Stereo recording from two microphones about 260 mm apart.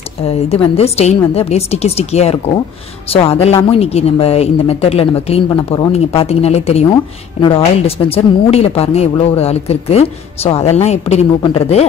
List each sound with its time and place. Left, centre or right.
0.3 s a woman's voice: left